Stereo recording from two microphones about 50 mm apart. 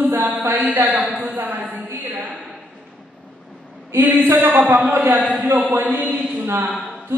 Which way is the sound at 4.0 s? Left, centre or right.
Right.